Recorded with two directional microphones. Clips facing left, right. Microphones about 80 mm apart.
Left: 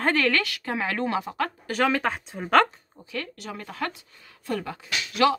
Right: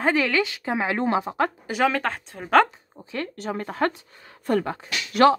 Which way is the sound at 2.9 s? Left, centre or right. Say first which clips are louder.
Right 3 dB; right.